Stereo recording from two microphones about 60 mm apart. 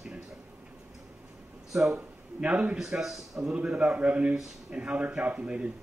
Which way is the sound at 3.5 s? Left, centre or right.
Centre.